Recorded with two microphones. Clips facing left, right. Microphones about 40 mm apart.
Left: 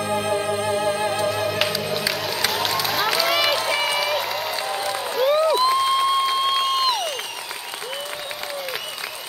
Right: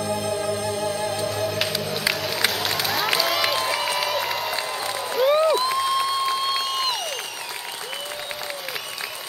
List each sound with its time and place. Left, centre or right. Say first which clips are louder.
0.0 s music: left 2 dB; left
1.8 s music: left 3 dB; centre
2.2 s run: left 1 dB; centre
4.0 s crowd: left 1 dB; centre
4.6 s applause: left 2 dB; centre
5.1 s a sound: even; centre
5.5 s crowd: left 3 dB; left